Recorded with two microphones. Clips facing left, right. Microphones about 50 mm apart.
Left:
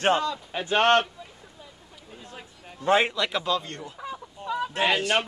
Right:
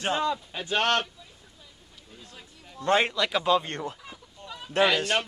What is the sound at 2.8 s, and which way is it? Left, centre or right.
Speech, centre.